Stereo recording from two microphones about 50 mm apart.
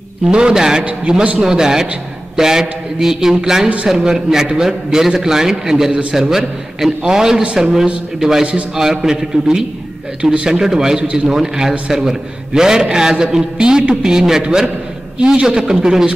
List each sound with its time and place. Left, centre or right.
0.3 s a man's voice: centre
11.0 s a man's voice: right
11.2 s a man's voice: centre